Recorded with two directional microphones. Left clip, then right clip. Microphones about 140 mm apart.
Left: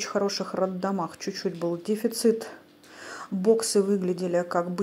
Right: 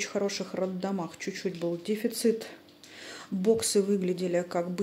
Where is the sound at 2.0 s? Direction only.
15° right (ahead or behind).